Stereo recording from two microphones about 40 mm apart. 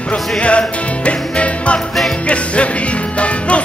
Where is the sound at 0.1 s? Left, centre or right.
Left.